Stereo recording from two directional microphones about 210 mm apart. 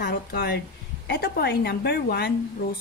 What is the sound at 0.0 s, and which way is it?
Speech, 45° left (ahead or behind).